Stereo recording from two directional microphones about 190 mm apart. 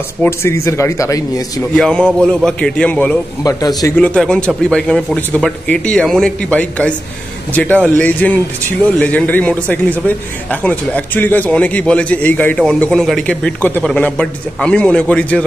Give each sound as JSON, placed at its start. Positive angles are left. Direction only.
{"t": 0.2, "sound": "speech", "side_deg": 15}
{"t": 1.8, "sound": "speech", "side_deg": 5}
{"t": 3.4, "sound": "speech", "side_deg": 20}
{"t": 3.9, "sound": "speech", "side_deg": 5}